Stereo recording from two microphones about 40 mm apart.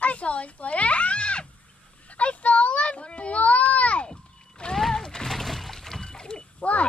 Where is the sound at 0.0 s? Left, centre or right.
Left.